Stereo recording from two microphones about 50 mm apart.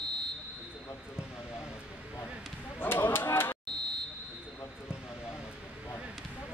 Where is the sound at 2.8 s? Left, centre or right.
Left.